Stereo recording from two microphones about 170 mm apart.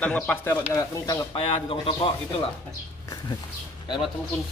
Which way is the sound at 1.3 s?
30° left (ahead or behind).